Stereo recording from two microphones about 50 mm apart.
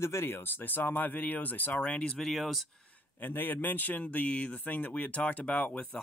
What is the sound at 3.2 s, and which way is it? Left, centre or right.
Speech, left.